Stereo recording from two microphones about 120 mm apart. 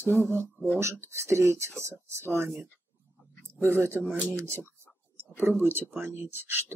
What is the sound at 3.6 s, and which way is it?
Speech, 20° right (ahead or behind).